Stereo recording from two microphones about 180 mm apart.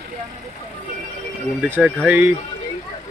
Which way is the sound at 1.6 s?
5° right (ahead or behind).